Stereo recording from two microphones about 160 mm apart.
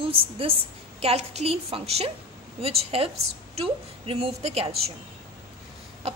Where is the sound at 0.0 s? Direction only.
35° right (ahead or behind).